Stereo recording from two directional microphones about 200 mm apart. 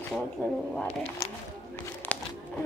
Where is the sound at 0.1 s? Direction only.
5° left (ahead or behind).